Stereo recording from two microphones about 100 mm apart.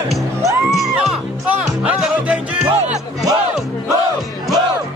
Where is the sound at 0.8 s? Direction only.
5° right (ahead or behind).